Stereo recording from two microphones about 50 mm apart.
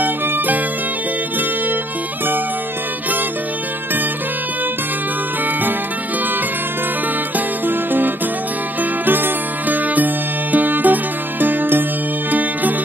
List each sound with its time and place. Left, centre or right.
7.3 s music: right